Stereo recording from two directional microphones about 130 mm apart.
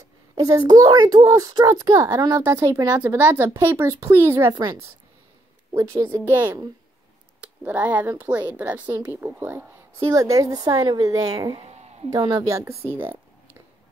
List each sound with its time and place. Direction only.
0.4 s a child's voice: 30° right (ahead or behind)
10.0 s a child's voice: 25° right (ahead or behind)
11.5 s a sound: 55° right (ahead or behind)
12.1 s a child's voice: 30° right (ahead or behind)